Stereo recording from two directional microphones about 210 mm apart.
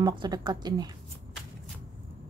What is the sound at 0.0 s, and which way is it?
Speech, 20° right (ahead or behind).